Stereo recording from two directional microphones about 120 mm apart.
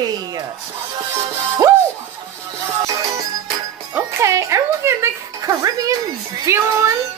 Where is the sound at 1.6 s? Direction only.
25° right (ahead or behind).